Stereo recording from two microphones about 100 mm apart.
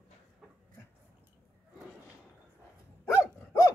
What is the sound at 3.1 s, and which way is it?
Dog, 30° left (ahead or behind).